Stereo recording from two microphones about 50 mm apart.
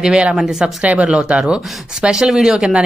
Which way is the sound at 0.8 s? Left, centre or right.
Right.